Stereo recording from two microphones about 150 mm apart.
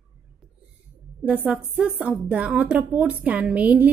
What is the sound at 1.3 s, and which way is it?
A woman's voice, 5° right (ahead or behind).